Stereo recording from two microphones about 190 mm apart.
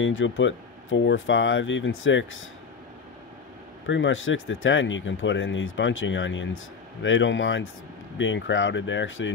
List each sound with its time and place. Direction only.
0.0 s speech: 90° left
3.8 s speech: 75° left (ahead or behind)